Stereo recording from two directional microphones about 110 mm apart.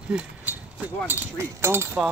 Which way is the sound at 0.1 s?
15° right (ahead or behind).